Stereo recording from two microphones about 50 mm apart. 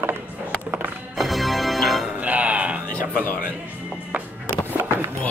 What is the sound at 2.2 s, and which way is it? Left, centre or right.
Music, right.